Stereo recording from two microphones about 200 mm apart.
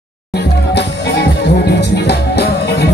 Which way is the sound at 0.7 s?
55° left (ahead or behind).